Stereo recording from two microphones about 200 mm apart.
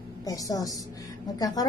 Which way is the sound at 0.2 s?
15° left (ahead or behind).